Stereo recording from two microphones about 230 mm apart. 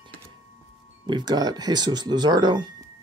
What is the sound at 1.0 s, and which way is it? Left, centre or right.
Speech, centre.